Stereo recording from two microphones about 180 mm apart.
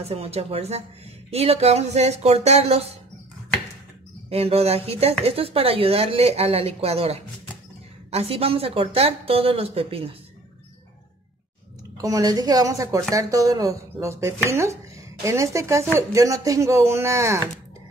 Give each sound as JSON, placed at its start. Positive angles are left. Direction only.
{"t": 0.1, "sound": "speech", "side_deg": -35}
{"t": 4.3, "sound": "speech", "side_deg": -35}
{"t": 12.0, "sound": "a woman's voice", "side_deg": -20}